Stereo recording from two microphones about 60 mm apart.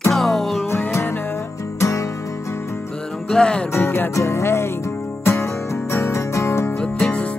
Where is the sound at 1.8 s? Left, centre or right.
Left.